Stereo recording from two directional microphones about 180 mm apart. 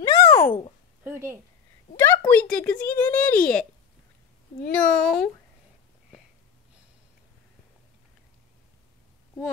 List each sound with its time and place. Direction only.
0.0 s a sound: 20° left (ahead or behind)
1.0 s speech: 15° right (ahead or behind)
2.0 s speech: 10° left (ahead or behind)
4.6 s speech: 5° left (ahead or behind)